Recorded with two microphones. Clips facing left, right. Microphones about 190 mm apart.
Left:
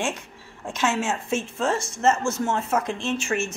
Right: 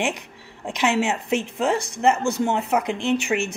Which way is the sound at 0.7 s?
20° right (ahead or behind).